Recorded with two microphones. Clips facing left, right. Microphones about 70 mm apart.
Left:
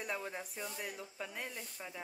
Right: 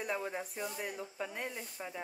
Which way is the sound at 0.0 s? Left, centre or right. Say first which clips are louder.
Right 4 dB; centre.